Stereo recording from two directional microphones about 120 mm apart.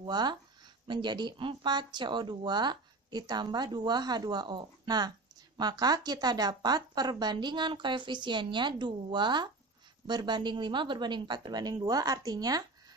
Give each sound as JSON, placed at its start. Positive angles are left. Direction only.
{"t": 0.0, "sound": "speech", "side_deg": -35}